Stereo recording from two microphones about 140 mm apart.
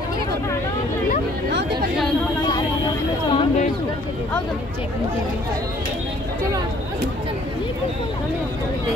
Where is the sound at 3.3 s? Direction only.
55° left (ahead or behind).